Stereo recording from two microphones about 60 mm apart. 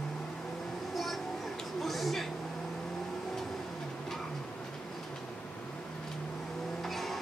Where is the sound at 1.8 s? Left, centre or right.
Centre.